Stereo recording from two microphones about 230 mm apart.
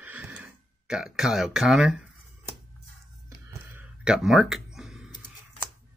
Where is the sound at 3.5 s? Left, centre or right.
Centre.